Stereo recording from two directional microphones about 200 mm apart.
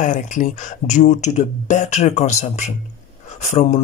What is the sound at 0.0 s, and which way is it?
Speech, 40° left (ahead or behind).